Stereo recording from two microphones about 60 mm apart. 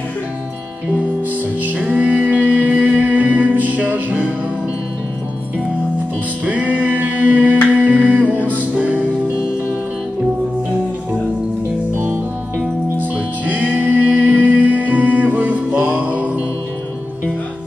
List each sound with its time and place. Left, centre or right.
1.9 s music: right
6.4 s singing: right
11.9 s music: right
13.6 s music: right